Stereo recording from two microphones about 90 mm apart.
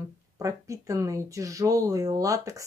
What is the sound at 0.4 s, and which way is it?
Speech, 35° right (ahead or behind).